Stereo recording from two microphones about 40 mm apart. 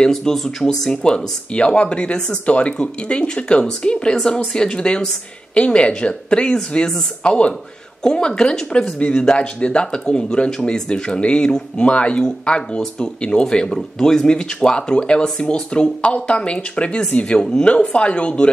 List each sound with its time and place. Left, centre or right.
0.2 s speech: centre; by 7.5 s left
8.0 s speech: centre
17.4 s speech: left